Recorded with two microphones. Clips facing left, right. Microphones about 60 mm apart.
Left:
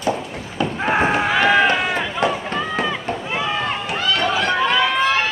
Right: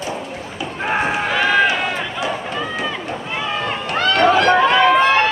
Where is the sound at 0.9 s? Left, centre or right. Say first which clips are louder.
Left 1 dB; centre.